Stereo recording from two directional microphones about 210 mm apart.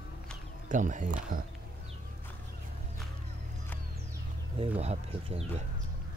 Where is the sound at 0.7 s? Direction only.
35° right (ahead or behind).